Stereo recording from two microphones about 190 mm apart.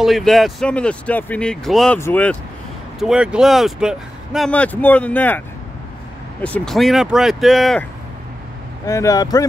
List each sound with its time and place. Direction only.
0.0 s speech: centre (ahead or behind)
3.0 s speech: 5° right (ahead or behind)
6.4 s speech: 5° left (ahead or behind)
8.8 s speech: 15° left (ahead or behind)